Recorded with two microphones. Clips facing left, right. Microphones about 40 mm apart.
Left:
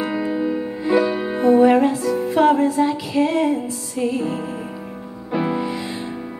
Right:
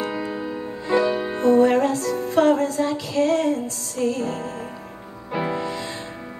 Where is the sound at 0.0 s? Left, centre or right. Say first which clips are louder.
Left 5 dB; centre.